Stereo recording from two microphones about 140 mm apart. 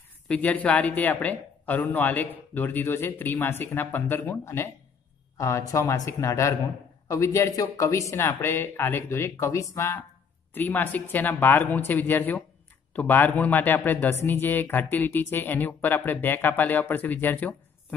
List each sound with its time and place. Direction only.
0.3 s speech: 10° left (ahead or behind)